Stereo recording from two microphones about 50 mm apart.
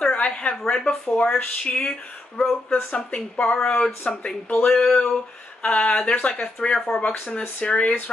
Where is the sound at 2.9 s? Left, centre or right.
Left.